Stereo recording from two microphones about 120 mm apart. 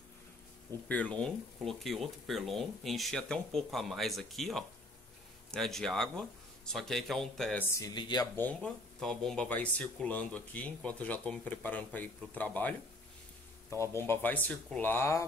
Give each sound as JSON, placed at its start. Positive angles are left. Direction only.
{"t": 0.8, "sound": "speech", "side_deg": 10}
{"t": 7.8, "sound": "speech", "side_deg": 35}
{"t": 8.4, "sound": "speech", "side_deg": 10}